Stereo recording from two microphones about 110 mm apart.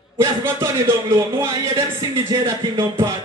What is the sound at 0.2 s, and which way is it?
Speech, 25° right (ahead or behind).